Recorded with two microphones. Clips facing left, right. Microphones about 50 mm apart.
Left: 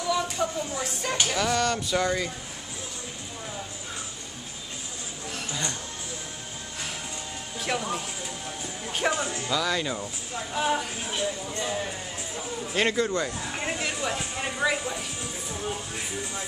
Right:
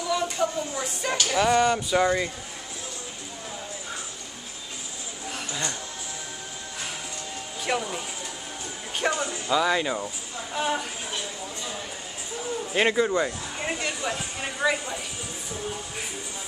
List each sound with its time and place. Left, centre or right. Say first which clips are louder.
0.1 s speech: right 1 dB; centre
1.3 s speech: right 7 dB; centre
5.3 s music: right 1 dB; centre
7.6 s speech: right 1 dB; centre
8.9 s music: even; centre
9.5 s speech: right 5 dB; centre
10.5 s speech: left 1 dB; centre
12.7 s speech: right 3 dB; centre
13.7 s speech: even; centre